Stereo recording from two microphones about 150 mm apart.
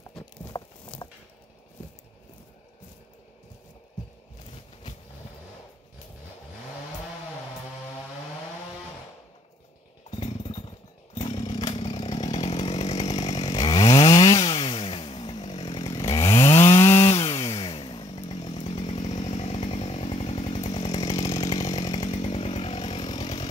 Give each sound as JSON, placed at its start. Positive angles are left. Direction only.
{"t": 0.2, "sound": "a sound", "side_deg": 30}
{"t": 10.1, "sound": "chainsaw", "side_deg": 40}
{"t": 11.1, "sound": "a sound", "side_deg": 35}
{"t": 11.5, "sound": "chainsaw", "side_deg": 30}
{"t": 11.8, "sound": "chainsaw", "side_deg": 40}
{"t": 13.3, "sound": "chainsaw", "side_deg": 25}
{"t": 14.6, "sound": "chainsaw", "side_deg": 35}
{"t": 15.8, "sound": "chainsaw", "side_deg": 25}
{"t": 17.6, "sound": "chainsaw", "side_deg": 35}
{"t": 21.1, "sound": "chainsaw", "side_deg": 25}